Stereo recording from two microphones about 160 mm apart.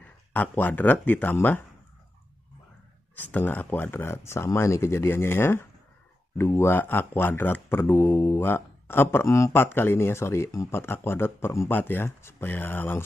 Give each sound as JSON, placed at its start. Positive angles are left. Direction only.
{"t": 0.3, "sound": "speech", "side_deg": 10}
{"t": 3.2, "sound": "speech", "side_deg": 10}